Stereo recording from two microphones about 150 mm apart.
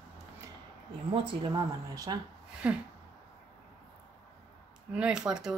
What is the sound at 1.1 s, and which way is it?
Speech, 35° right (ahead or behind).